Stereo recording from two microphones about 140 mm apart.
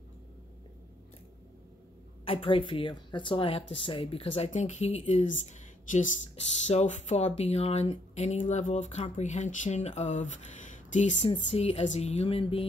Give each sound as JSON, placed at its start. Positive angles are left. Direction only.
{"t": 2.2, "sound": "speech", "side_deg": 40}
{"t": 4.5, "sound": "speech", "side_deg": 55}
{"t": 11.2, "sound": "speech", "side_deg": 45}